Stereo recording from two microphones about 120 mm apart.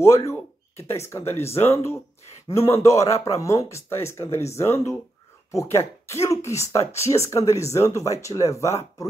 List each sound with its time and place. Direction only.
0.0 s a man's voice: 25° left (ahead or behind)